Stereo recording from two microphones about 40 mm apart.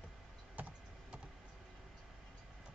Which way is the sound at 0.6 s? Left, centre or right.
Right.